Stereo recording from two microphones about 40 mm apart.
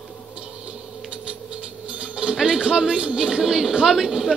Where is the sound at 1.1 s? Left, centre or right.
Right; by 3.7 s centre.